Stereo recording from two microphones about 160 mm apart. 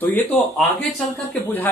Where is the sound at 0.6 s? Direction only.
Centre (ahead or behind).